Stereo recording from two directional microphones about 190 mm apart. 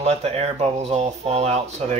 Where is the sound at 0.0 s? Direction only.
35° right (ahead or behind).